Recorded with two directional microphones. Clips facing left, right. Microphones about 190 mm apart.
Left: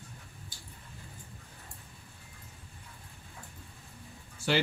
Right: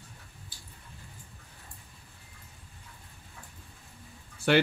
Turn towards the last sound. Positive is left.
turn(degrees=-60)  # may be behind; listen again after turning